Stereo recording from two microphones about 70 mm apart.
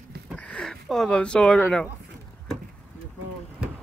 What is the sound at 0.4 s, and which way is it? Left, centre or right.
Speech, centre.